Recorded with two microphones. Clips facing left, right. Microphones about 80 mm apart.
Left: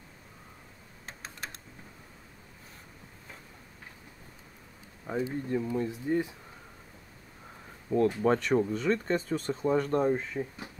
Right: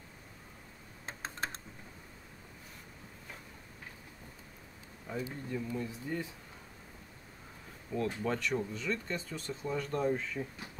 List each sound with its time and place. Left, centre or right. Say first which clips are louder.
1.0 s typing: right 3 dB; right
5.0 s speech: left 7 dB; left
7.9 s speech: left 9 dB; left